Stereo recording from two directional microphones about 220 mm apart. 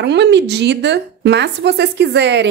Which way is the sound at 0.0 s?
50° right (ahead or behind).